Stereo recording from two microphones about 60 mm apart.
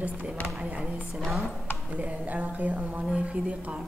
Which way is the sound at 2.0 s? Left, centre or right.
Right.